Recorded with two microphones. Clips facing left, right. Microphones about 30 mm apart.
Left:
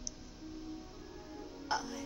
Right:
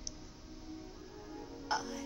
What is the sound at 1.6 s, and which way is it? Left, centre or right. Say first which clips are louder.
Speech: even; centre.